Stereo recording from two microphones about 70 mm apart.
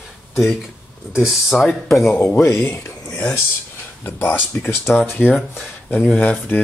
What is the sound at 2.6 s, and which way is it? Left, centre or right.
Speech, left.